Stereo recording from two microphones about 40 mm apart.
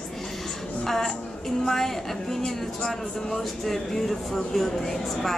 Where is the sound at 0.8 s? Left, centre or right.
Centre.